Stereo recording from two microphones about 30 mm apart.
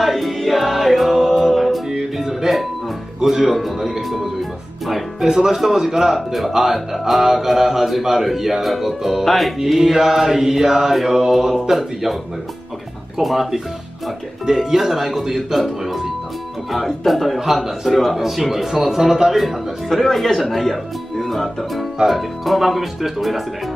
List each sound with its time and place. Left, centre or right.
0.0 s music: centre
1.1 s a capella: centre
1.5 s music: centre
1.9 s music: centre
3.3 s speech: centre
3.5 s music: centre
5.2 s speech: centre
6.1 s speech: centre
9.8 s speech: centre
13.2 s speech: centre
14.4 s speech: centre
19.3 s speech: centre